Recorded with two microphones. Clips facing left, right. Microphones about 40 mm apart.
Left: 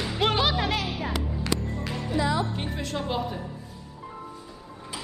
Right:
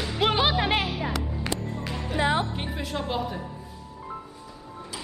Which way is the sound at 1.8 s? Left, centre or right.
Centre.